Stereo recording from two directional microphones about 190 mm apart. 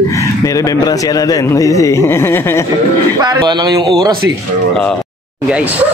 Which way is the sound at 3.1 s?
20° right (ahead or behind).